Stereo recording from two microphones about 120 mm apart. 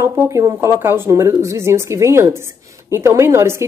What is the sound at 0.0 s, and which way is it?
Speech, 25° right (ahead or behind).